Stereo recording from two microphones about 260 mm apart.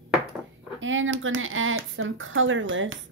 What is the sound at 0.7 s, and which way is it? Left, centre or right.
Speech, right.